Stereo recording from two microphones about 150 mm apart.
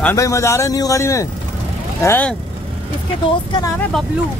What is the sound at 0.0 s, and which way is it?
A man's voice, 20° left (ahead or behind).